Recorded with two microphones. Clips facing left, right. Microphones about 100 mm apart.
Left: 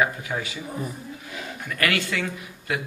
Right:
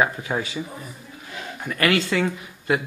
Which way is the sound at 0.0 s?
30° right (ahead or behind).